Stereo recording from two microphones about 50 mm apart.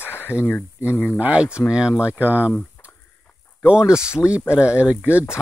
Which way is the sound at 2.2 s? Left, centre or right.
Right.